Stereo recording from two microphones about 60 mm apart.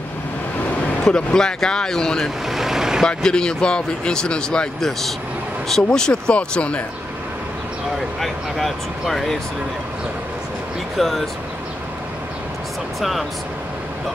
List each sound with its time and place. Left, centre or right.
1.0 s speech: centre
2.4 s vehicle: centre
3.2 s speech: centre
8.2 s speech: centre
11.0 s speech: centre